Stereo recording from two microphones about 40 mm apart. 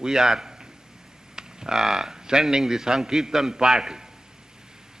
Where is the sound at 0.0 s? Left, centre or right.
Centre.